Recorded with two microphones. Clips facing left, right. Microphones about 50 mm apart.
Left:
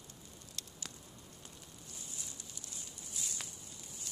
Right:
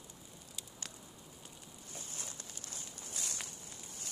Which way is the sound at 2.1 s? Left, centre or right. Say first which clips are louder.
Right 2 dB; right.